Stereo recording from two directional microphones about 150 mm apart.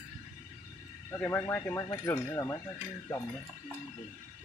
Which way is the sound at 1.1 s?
15° left (ahead or behind).